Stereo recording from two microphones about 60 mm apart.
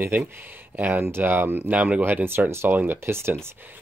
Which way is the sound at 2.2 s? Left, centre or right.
Right.